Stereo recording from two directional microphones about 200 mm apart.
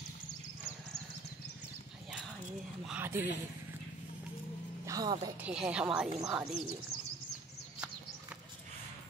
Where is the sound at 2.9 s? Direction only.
10° right (ahead or behind).